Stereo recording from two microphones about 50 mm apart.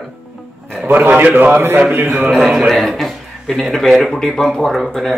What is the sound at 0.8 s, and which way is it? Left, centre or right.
Speech, right.